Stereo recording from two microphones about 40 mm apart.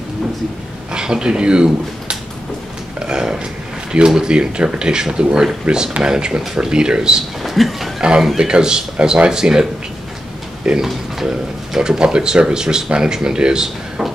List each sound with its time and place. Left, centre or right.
0.9 s speech: centre
3.1 s a sound: centre
4.2 s speech: right
7.4 s speech: centre
8.0 s speech: right
10.8 s speech: centre